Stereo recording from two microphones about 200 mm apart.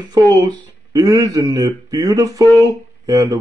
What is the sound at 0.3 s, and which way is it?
Speech, 20° right (ahead or behind).